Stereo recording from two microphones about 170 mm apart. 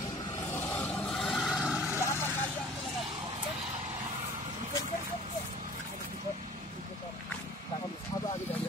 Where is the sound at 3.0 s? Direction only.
25° right (ahead or behind).